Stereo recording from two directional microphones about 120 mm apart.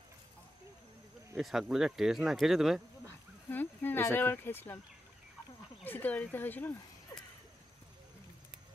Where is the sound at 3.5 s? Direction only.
15° left (ahead or behind).